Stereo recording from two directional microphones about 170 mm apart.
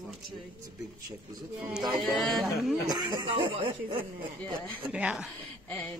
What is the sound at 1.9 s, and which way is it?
Speech, centre (ahead or behind).